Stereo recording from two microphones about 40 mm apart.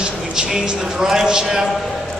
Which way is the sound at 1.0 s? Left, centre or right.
Centre.